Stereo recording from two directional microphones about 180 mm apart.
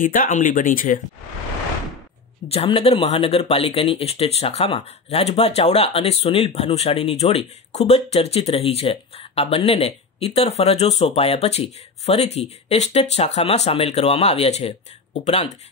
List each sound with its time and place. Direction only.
0.0 s speech: 50° left (ahead or behind)
2.4 s speech: 35° left (ahead or behind)